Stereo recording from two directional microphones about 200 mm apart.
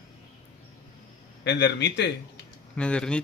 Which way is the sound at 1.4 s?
65° left (ahead or behind).